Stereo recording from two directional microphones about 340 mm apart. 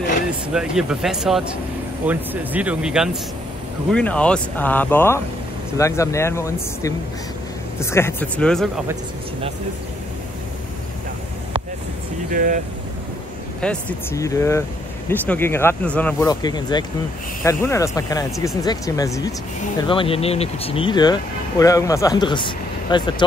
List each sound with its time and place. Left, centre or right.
0.5 s speech: centre
12.3 s speech: right
13.6 s speech: centre